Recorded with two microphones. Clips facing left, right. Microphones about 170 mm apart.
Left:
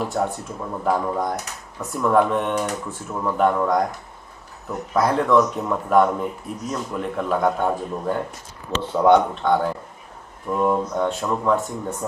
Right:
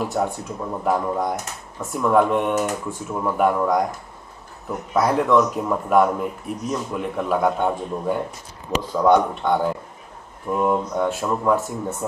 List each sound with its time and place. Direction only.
0.0 s speech: 5° right (ahead or behind)
8.8 s speech: 30° left (ahead or behind)
9.1 s speech: 10° right (ahead or behind)